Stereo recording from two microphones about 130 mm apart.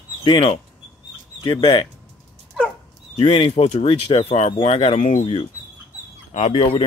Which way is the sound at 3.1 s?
45° left (ahead or behind).